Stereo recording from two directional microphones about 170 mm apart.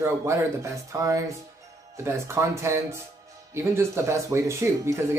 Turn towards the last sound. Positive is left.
turn(degrees=-15)  # may be behind; listen again after turning